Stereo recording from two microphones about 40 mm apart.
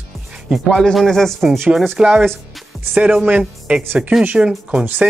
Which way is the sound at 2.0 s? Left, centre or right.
Right.